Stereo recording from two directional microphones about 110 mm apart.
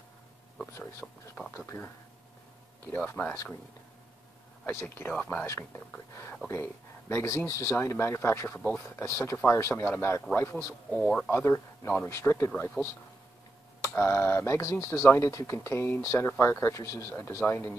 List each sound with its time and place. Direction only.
1.0 s speech: 5° left (ahead or behind)
3.2 s speech: 15° left (ahead or behind)
4.6 s speech: 20° left (ahead or behind)
10.9 s speech: 5° left (ahead or behind)
11.2 s speech: 20° left (ahead or behind)
13.7 s speech: 25° left (ahead or behind)